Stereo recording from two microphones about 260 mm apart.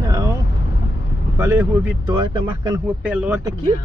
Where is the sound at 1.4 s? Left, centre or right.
Centre.